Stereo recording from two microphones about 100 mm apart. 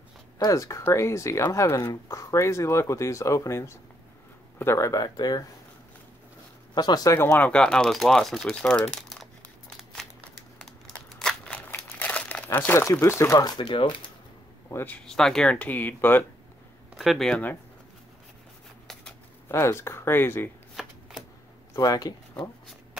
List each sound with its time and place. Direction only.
0.4 s speech: 35° left (ahead or behind)
6.7 s speech: 45° left (ahead or behind)
7.2 s speech: 20° left (ahead or behind)
10.6 s crushing: 5° left (ahead or behind)
11.7 s crumpling: 15° left (ahead or behind)
12.4 s speech: 25° left (ahead or behind)
13.4 s speech: 50° left (ahead or behind)
14.7 s speech: 25° left (ahead or behind)
15.0 s speech: 5° left (ahead or behind)
16.9 s speech: centre (ahead or behind)
19.5 s speech: 25° left (ahead or behind)
20.8 s shuffling cards: 5° right (ahead or behind)
21.7 s speech: 40° left (ahead or behind)